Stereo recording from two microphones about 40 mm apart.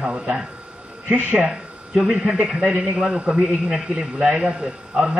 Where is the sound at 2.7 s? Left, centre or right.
Right.